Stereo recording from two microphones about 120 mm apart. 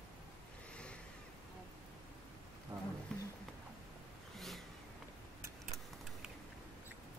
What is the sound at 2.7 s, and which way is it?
Wild animals, 35° right (ahead or behind).